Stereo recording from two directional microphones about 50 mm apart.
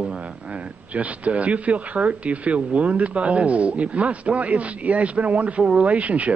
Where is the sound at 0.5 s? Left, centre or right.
Right.